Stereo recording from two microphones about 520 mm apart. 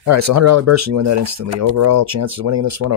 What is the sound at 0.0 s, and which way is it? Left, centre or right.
Speech, right.